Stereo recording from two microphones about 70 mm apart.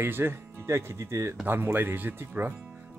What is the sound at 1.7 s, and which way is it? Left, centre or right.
Speech, right.